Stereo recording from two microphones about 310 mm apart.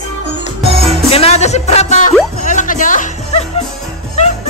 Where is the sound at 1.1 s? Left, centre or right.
Centre.